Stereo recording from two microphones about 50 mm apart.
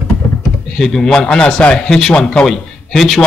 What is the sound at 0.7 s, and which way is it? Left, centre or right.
A man's voice, centre.